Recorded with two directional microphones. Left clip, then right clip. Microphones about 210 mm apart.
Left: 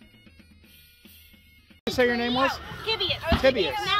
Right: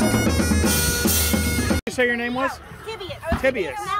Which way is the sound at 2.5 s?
40° right (ahead or behind).